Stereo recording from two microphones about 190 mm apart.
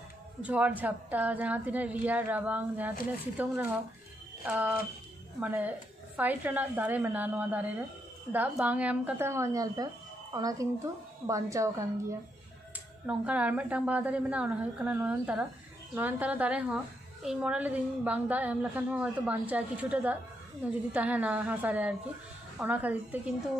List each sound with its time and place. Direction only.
0.4 s a woman's voice: 5° right (ahead or behind)